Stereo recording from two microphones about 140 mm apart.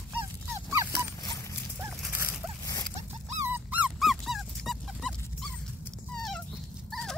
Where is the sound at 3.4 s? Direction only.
10° right (ahead or behind).